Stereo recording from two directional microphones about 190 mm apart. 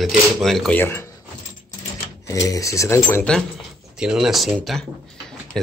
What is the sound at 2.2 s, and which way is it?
Speech, 15° left (ahead or behind).